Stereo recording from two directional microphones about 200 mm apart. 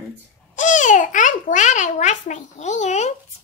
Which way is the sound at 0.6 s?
40° left (ahead or behind).